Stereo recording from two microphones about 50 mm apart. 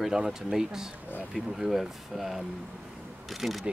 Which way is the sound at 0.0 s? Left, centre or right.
Centre.